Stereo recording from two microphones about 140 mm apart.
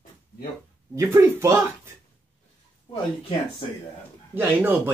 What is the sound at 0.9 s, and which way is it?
Speech, 20° right (ahead or behind).